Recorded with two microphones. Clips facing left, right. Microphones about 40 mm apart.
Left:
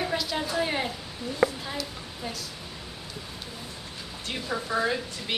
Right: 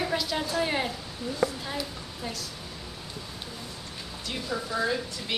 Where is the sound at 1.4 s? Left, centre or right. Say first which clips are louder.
Left 3 dB; left.